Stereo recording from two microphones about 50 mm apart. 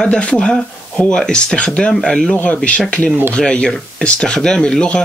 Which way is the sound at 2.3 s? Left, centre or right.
Left.